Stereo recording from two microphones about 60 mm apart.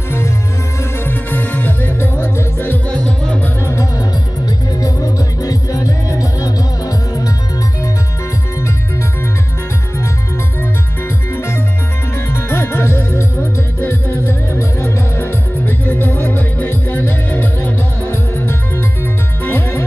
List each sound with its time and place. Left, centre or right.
0.9 s music: left
2.9 s music: centre
3.6 s music: left
4.5 s music: left
11.3 s music: left